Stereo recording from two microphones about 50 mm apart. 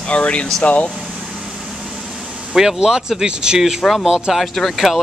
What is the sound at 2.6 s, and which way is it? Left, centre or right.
Speech, centre.